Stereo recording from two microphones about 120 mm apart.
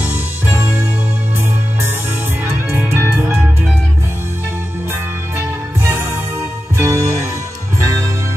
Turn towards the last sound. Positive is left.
turn(degrees=-25)  # may be behind; listen again after turning